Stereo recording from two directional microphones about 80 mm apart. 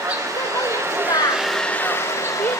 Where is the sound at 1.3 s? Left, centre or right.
Centre.